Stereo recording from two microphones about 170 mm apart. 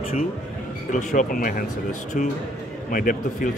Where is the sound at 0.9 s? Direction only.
50° left (ahead or behind).